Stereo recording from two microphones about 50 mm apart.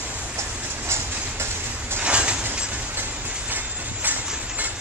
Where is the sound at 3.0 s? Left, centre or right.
Right.